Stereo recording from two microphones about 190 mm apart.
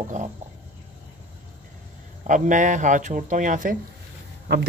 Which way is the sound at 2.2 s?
40° right (ahead or behind).